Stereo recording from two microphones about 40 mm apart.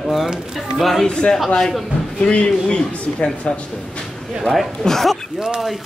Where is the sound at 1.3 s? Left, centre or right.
Centre.